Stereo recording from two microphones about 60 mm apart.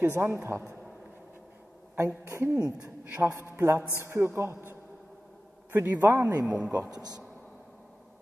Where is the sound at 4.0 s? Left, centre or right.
Right.